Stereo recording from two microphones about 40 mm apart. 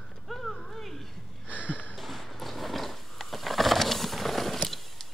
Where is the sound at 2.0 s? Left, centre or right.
Centre.